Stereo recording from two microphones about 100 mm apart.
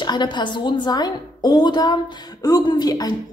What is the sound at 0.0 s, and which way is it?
A woman's voice, 50° left (ahead or behind).